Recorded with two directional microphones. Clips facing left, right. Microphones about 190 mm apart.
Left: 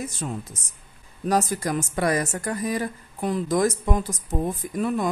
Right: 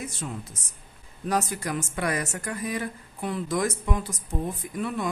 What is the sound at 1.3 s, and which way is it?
Speech, 40° left (ahead or behind).